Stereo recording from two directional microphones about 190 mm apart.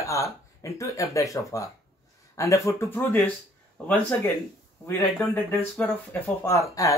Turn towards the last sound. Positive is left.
turn(degrees=15)  # may be behind; listen again after turning